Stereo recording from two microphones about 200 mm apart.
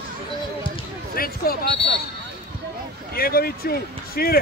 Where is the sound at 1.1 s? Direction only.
45° left (ahead or behind).